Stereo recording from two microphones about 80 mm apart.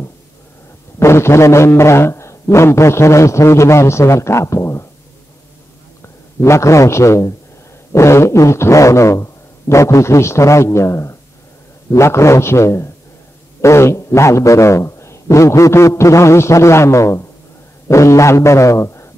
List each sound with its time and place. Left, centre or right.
0.9 s a man's voice: left
6.0 s a man's voice: left